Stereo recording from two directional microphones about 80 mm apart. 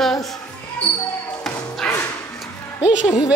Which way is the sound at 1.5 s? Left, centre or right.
Centre.